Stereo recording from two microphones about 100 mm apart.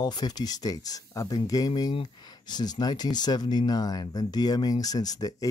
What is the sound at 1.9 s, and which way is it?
Speech, 60° left (ahead or behind).